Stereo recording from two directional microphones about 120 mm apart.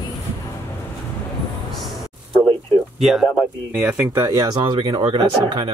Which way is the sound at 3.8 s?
15° right (ahead or behind).